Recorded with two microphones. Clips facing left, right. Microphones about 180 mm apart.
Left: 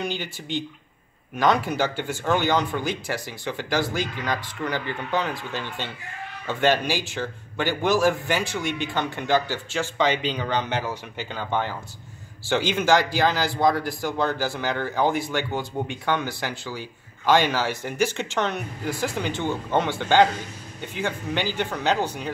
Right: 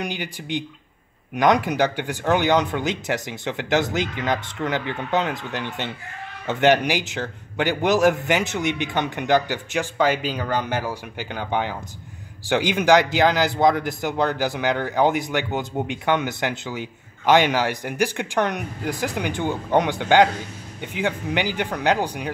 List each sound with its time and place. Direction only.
0.0 s a man's voice: 15° right (ahead or behind)